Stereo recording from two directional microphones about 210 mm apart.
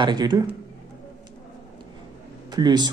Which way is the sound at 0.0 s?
20° right (ahead or behind).